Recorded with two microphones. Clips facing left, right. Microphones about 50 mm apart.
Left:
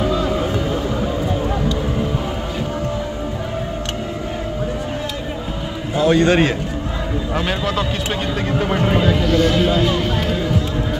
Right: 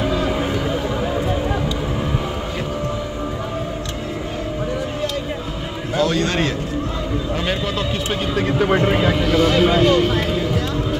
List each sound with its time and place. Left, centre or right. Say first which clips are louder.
5.9 s a man's voice: left 5 dB; centre
7.3 s speech: left 4 dB; centre
9.0 s speech: even; centre